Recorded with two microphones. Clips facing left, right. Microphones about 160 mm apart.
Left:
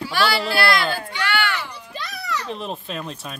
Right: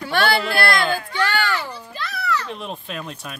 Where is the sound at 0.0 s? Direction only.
55° right (ahead or behind).